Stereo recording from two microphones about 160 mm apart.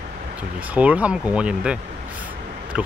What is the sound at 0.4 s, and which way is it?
Speech, 10° right (ahead or behind).